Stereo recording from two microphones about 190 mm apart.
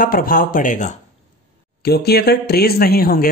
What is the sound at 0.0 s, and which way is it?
Speech, 50° left (ahead or behind).